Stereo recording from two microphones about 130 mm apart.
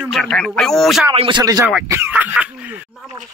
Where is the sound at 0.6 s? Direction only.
5° left (ahead or behind).